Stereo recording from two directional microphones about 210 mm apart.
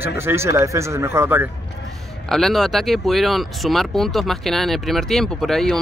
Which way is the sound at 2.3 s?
Centre (ahead or behind).